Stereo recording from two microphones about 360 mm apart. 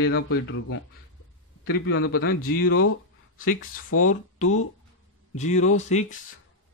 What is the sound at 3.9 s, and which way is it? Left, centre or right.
Speech, left.